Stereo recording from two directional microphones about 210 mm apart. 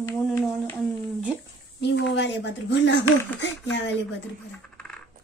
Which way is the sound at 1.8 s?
55° left (ahead or behind).